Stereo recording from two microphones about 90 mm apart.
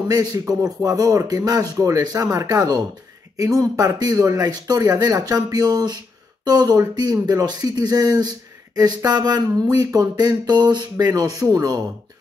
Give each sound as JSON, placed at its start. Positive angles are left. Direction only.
{"t": 0.1, "sound": "speech", "side_deg": -45}